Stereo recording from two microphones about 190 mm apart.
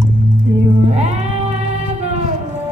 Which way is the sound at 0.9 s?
35° right (ahead or behind).